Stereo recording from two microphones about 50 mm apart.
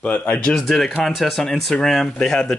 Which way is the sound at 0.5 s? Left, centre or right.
Centre.